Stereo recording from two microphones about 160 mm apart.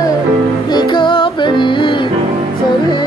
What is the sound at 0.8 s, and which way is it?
Music, 30° left (ahead or behind).